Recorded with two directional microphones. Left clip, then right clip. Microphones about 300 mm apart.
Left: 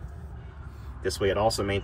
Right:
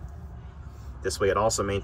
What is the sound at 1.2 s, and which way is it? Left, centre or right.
Speech, centre.